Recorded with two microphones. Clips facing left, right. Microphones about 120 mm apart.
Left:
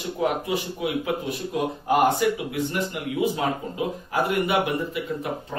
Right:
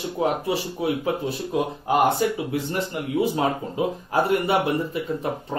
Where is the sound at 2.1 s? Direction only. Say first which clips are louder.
Even; 30° right (ahead or behind).